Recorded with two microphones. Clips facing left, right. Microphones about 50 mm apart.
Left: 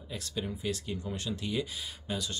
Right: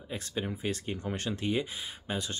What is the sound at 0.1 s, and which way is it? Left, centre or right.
Speech, right.